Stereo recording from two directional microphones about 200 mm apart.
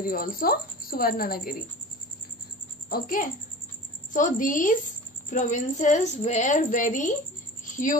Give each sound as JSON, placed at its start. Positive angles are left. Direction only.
{"t": 0.0, "sound": "a woman's voice", "side_deg": 45}
{"t": 2.9, "sound": "a woman's voice", "side_deg": 45}